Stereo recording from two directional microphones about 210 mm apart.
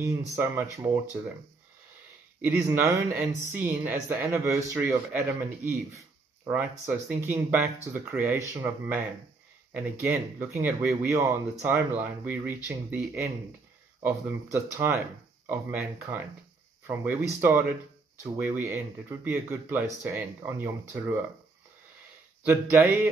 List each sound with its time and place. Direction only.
0.4 s speech: 10° right (ahead or behind)
2.4 s speech: 10° right (ahead or behind)
22.4 s speech: 10° right (ahead or behind)